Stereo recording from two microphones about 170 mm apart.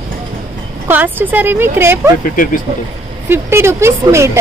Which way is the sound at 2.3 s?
55° left (ahead or behind).